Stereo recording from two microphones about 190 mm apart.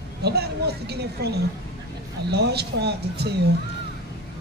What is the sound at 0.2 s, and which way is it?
Speech, 55° right (ahead or behind).